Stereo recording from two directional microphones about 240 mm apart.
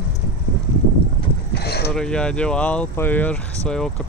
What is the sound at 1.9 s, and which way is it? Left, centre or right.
Speech, centre.